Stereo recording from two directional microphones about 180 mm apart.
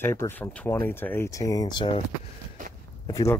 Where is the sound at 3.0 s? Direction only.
20° left (ahead or behind).